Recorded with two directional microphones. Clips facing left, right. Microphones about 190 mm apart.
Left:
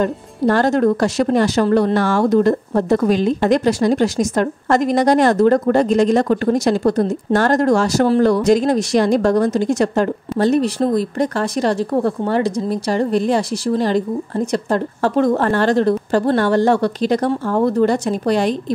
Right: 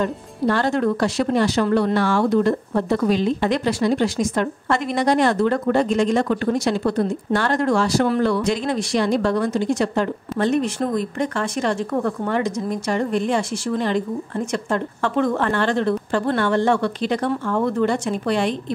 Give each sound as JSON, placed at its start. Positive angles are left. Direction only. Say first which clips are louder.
{"t": 0.0, "sound": "speech", "louder": "left 4 dB", "side_deg": 45}